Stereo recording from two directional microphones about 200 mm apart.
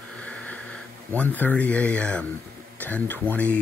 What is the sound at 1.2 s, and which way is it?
Speech, 10° left (ahead or behind).